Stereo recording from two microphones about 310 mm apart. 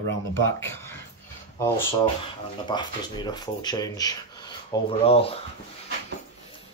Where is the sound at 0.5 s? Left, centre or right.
Centre.